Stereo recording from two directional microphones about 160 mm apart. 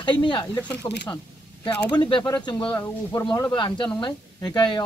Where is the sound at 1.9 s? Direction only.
30° left (ahead or behind).